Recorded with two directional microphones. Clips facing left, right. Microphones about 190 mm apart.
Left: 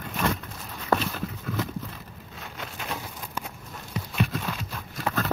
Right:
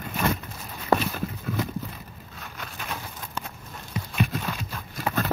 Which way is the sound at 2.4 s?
20° left (ahead or behind).